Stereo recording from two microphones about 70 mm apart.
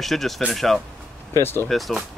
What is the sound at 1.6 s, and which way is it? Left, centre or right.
Speech, centre.